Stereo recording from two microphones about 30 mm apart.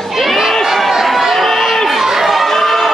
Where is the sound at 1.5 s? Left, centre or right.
Centre.